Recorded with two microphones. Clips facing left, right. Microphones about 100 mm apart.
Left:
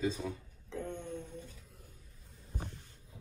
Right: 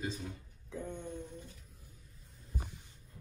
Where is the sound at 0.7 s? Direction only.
10° right (ahead or behind).